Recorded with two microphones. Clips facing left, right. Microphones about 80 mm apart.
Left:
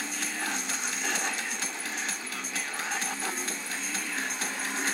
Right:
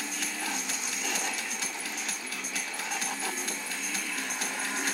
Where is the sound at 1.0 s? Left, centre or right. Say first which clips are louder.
Left 2 dB; left.